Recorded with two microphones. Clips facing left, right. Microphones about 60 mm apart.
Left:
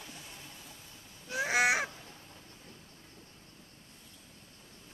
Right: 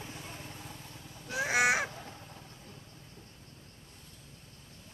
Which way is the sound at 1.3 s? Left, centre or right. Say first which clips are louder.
Even; centre.